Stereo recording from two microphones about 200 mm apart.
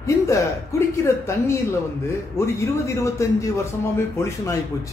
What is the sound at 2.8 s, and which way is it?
A man's voice, 15° left (ahead or behind).